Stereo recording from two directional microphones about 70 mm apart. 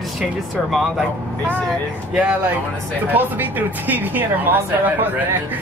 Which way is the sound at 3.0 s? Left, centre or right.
Right.